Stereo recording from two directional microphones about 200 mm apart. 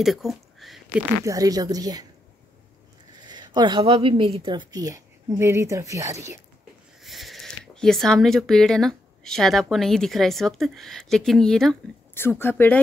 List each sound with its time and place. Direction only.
0.0 s speech: centre (ahead or behind)
1.2 s a woman's voice: 15° right (ahead or behind)
3.2 s a woman's voice: 20° right (ahead or behind)
7.0 s speech: centre (ahead or behind)